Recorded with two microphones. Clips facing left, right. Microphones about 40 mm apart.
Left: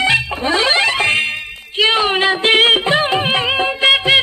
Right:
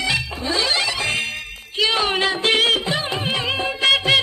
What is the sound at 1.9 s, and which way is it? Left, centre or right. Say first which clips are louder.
Music: left 5 dB; left.